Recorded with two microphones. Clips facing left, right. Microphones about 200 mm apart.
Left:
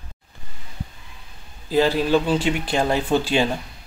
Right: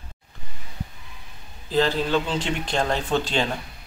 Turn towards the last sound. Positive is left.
turn(degrees=10)  # may be behind; listen again after turning